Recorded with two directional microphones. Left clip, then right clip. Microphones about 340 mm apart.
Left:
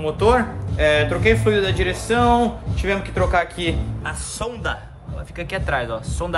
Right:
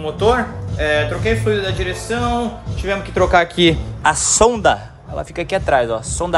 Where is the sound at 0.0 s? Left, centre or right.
Centre.